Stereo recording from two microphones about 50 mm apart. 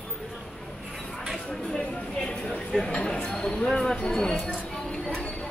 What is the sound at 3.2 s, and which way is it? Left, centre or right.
Speech, centre.